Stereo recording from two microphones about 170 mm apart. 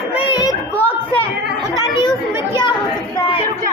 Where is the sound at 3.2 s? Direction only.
30° left (ahead or behind).